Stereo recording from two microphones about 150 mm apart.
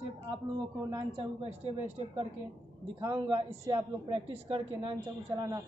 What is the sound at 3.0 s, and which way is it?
Speech, 30° right (ahead or behind).